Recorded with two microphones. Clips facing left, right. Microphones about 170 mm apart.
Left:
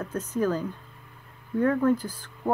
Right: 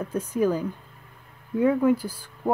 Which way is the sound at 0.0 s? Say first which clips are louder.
Right 3 dB; 10° right (ahead or behind).